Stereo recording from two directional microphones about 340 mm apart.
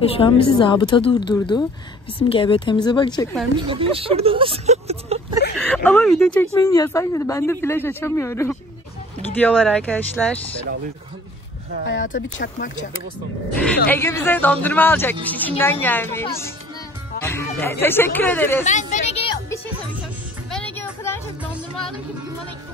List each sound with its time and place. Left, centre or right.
0.2 s speech: centre
3.5 s speech: centre
5.6 s speech: centre
11.8 s speech: left
13.8 s speech: centre
18.7 s music: left
20.5 s a sound: centre
21.4 s music: centre